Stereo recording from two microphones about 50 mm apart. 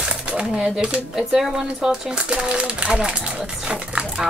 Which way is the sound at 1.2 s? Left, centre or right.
Centre.